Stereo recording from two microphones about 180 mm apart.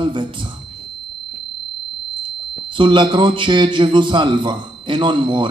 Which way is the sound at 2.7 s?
25° right (ahead or behind).